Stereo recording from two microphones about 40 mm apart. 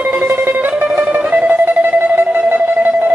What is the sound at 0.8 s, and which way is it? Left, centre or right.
Music, right.